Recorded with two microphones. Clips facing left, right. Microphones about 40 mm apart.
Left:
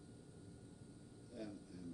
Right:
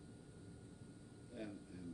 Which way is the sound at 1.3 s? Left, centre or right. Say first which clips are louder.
Right 1 dB; right.